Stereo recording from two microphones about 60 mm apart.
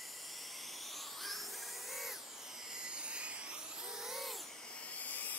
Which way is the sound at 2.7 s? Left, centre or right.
Centre.